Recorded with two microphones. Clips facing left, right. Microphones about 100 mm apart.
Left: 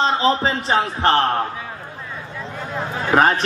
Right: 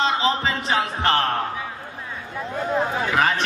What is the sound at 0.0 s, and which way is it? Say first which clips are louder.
A man's voice: left 3 dB; 35° left (ahead or behind).